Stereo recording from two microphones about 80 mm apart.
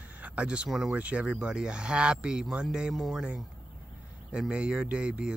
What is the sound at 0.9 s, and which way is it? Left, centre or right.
Speech, centre.